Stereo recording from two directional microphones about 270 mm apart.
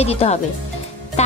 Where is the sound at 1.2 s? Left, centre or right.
Left.